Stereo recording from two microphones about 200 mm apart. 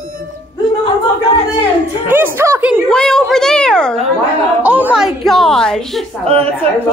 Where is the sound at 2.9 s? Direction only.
5° left (ahead or behind).